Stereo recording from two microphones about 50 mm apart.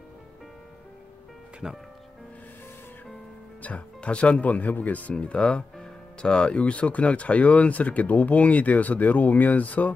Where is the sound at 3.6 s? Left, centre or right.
Left.